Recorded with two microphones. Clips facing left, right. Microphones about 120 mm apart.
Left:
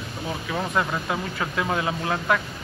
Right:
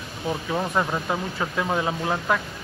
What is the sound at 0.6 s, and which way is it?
Speech, 15° right (ahead or behind).